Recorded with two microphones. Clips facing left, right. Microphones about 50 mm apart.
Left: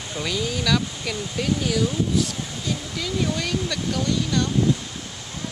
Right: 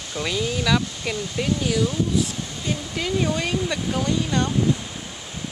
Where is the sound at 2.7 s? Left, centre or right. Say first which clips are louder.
Right 3 dB; right.